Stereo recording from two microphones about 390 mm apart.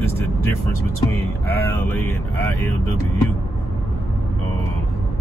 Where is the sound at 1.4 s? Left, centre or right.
Centre.